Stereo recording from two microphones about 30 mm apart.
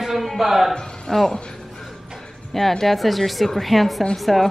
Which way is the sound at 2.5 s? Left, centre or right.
Centre.